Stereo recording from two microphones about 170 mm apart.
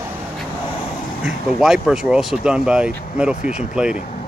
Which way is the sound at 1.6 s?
Centre (ahead or behind).